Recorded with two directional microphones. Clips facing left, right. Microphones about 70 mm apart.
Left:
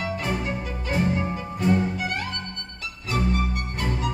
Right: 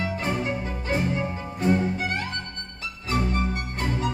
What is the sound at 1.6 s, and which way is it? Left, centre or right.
Music, right.